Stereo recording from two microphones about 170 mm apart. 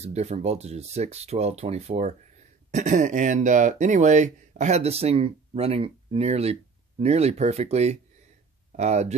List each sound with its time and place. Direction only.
0.0 s speech: 40° right (ahead or behind)